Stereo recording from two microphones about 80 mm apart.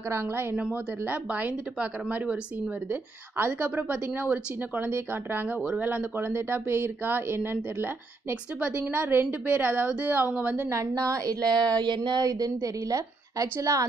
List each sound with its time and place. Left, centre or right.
0.1 s speech: right
2.9 s speech: right
10.8 s a woman's voice: right
11.5 s speech: right
12.3 s a woman's voice: right